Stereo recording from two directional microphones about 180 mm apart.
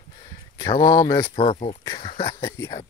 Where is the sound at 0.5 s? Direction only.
25° left (ahead or behind).